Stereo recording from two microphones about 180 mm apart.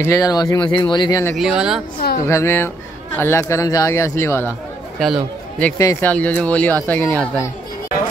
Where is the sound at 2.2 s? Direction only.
15° left (ahead or behind).